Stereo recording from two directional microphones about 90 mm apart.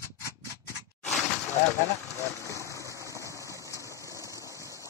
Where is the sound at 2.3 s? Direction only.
35° left (ahead or behind).